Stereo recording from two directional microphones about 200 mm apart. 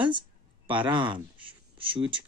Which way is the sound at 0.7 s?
25° right (ahead or behind).